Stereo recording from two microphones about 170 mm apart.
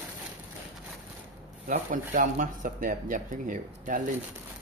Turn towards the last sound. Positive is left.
turn(degrees=-50)  # may be behind; listen again after turning